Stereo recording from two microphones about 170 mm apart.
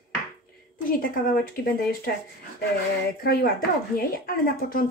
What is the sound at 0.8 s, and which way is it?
Speech, 55° left (ahead or behind).